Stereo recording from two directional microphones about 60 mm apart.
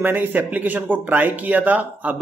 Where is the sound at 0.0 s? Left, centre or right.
Right.